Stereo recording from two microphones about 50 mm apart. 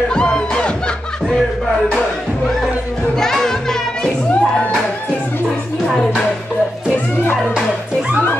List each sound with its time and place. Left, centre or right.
0.1 s music: centre
3.2 s music: centre